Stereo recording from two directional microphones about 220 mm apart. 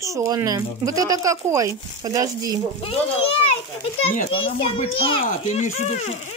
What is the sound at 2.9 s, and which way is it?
A child's voice, 25° left (ahead or behind).